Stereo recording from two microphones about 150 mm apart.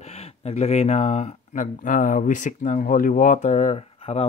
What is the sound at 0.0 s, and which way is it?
Speech, 45° left (ahead or behind).